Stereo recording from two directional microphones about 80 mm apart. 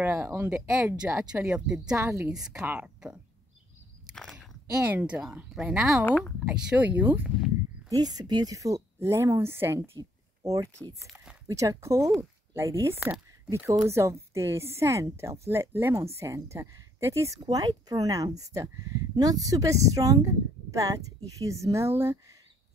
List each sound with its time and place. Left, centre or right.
0.0 s speech: right; by 2.0 s centre
2.0 s a woman's voice: right
2.2 s speech: centre
4.1 s chewing: centre
4.8 s speech: centre
5.2 s speech: centre
6.0 s speech: centre
6.4 s speech: centre
7.2 s a sound: centre
7.9 s speech: right
9.8 s a sound: right
11.4 s a woman's voice: right
17.4 s speech: right